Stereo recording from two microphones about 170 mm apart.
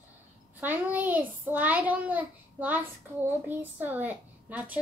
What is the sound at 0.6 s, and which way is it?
A child's voice, 10° right (ahead or behind).